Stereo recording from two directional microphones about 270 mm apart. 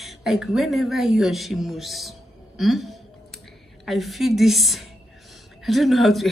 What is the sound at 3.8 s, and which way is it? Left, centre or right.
Speech, centre.